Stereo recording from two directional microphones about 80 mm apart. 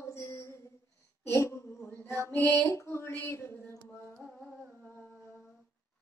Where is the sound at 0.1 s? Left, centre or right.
Left.